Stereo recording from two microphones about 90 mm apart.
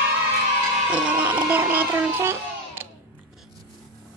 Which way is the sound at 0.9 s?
15° right (ahead or behind).